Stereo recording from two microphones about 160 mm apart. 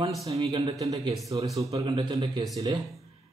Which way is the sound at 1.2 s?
20° right (ahead or behind).